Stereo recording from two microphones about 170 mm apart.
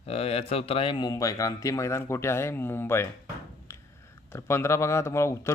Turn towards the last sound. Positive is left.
turn(degrees=15)  # may be behind; listen again after turning